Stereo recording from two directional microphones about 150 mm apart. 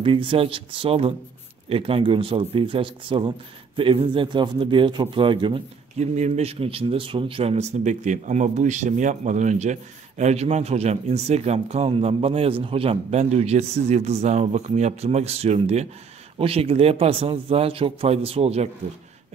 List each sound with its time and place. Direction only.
0.0 s speech: 35° right (ahead or behind)
5.9 s speech: 50° right (ahead or behind)